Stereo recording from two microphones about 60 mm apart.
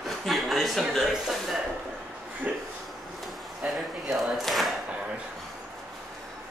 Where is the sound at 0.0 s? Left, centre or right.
Centre.